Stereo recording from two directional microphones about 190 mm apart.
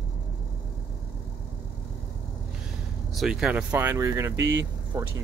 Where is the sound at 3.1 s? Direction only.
Centre (ahead or behind).